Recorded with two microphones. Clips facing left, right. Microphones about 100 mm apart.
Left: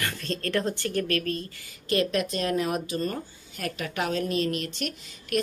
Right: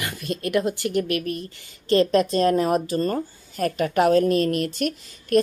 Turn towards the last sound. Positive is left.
turn(degrees=-45)  # may be behind; listen again after turning